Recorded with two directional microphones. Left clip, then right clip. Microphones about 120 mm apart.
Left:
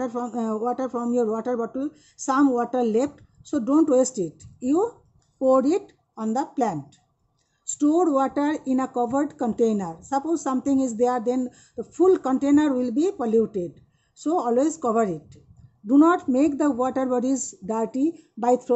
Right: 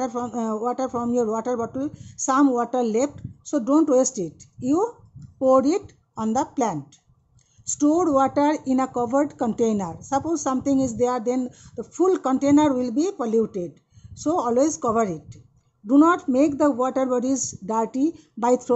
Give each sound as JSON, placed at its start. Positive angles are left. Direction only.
{"t": 0.0, "sound": "speech", "side_deg": -15}
{"t": 7.7, "sound": "speech", "side_deg": -20}